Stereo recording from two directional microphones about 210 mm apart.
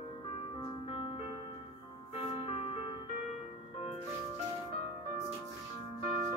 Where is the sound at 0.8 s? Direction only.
25° left (ahead or behind).